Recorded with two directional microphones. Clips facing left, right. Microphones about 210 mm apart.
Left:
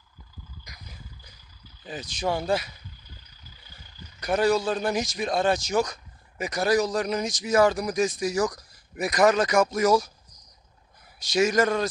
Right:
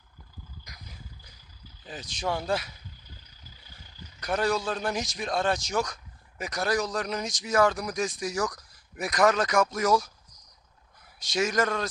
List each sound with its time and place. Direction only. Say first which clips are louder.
1.9 s a man's voice: left 3 dB; centre (ahead or behind)
4.2 s a man's voice: left 5 dB; 5° left (ahead or behind)
11.1 s a man's voice: left 5 dB; centre (ahead or behind)